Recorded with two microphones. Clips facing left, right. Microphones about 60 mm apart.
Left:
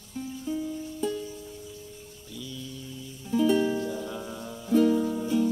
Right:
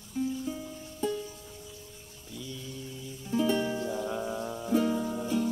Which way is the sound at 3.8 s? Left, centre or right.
Centre.